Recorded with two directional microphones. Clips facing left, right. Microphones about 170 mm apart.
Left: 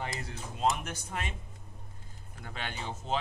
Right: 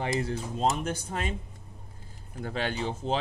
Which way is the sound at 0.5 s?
30° right (ahead or behind).